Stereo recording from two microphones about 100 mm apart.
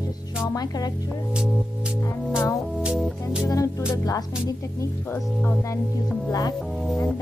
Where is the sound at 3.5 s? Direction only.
35° left (ahead or behind).